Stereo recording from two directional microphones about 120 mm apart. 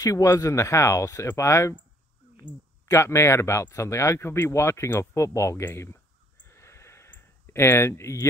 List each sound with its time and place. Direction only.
0.0 s speech: 30° left (ahead or behind)
2.9 s speech: 25° left (ahead or behind)
6.4 s a sound: 25° left (ahead or behind)